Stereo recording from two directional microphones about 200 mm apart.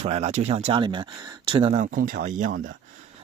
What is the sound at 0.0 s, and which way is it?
Speech, 30° right (ahead or behind).